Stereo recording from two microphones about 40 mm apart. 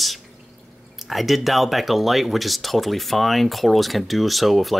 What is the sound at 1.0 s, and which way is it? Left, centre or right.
Speech, centre.